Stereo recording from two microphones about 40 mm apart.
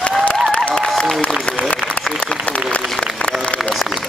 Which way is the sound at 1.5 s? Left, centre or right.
Left.